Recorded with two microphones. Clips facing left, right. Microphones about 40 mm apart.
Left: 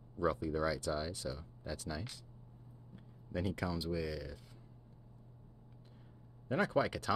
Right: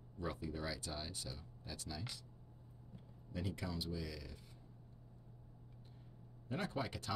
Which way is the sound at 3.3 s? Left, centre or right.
Left.